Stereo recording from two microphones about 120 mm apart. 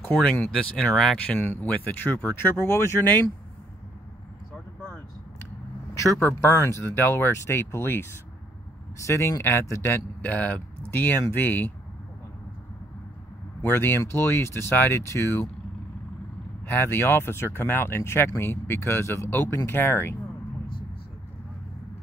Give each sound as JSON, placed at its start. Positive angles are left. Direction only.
{"t": 0.0, "sound": "speech", "side_deg": 10}
{"t": 6.1, "sound": "speech", "side_deg": 20}
{"t": 13.7, "sound": "speech", "side_deg": 20}
{"t": 16.6, "sound": "speech", "side_deg": 20}